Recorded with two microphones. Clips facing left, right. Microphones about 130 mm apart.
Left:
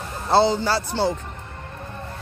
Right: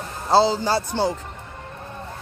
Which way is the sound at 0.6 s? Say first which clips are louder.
Even; 15° right (ahead or behind).